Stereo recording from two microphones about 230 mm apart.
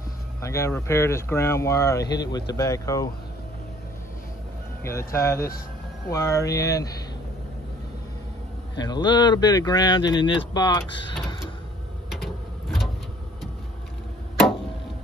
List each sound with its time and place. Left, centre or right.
0.4 s speech: centre
4.8 s speech: centre
8.8 s speech: centre
12.1 s a sound: centre